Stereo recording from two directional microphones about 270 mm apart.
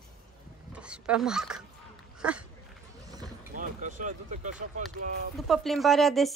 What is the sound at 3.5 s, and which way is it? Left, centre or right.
Speech, right.